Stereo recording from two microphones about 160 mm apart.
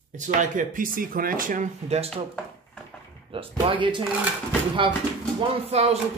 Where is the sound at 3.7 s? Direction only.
30° right (ahead or behind).